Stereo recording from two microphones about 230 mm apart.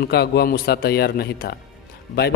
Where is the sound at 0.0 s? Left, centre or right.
Left.